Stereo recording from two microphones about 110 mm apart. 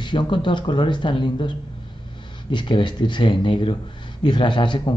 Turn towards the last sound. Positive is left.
turn(degrees=45)  # may be behind; listen again after turning